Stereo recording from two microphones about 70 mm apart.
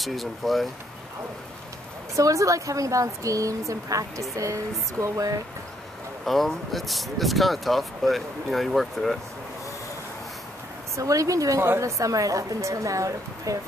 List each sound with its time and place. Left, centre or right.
0.0 s speech: centre
2.1 s a woman's voice: right
6.2 s speech: centre
11.0 s a woman's voice: right